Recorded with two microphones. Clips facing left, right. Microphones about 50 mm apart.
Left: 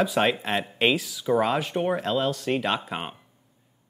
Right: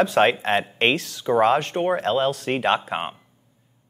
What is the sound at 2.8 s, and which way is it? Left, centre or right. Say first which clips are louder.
Speech: right 5 dB; right.